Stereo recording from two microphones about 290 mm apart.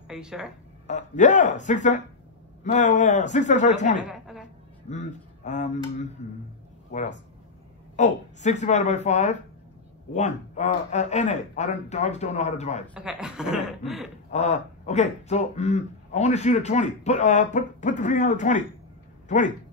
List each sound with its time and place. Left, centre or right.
0.1 s speech: centre
0.8 s a man's voice: left
4.1 s a sound: centre
4.8 s a man's voice: left
12.9 s speech: centre
14.3 s a man's voice: left